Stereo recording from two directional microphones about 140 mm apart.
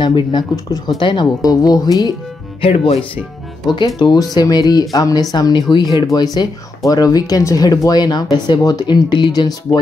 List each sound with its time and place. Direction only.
0.0 s speech: 35° left (ahead or behind)
2.6 s speech: 45° left (ahead or behind)
3.6 s speech: 30° left (ahead or behind)